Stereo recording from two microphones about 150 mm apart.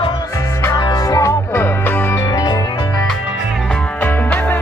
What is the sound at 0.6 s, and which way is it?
Music, 25° left (ahead or behind).